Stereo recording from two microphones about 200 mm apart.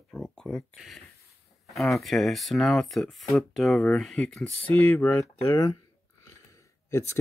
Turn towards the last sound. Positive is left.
turn(degrees=15)  # may be behind; listen again after turning